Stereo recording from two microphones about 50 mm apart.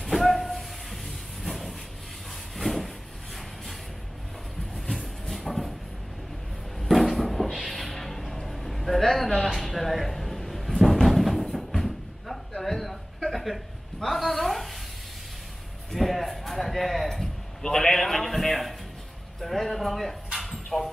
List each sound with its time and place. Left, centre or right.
0.0 s train: centre
2.5 s vehicle: centre
5.3 s cupboard open or close: centre
6.8 s a sound: centre
13.9 s a woman's voice: centre
15.9 s a sound: centre
20.3 s dog: centre